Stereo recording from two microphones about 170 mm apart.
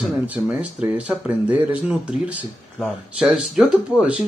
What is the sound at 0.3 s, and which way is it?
Speech, 10° right (ahead or behind).